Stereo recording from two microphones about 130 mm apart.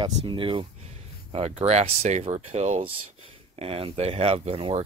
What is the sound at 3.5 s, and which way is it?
Speech, 45° right (ahead or behind).